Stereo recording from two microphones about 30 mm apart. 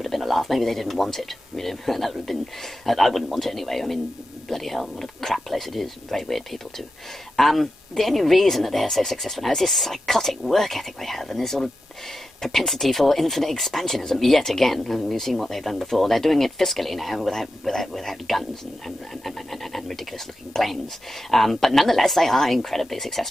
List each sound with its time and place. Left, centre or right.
0.0 s speech: centre
21.3 s speech: centre